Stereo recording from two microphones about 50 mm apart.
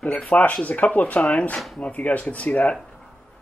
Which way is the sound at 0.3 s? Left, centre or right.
Left.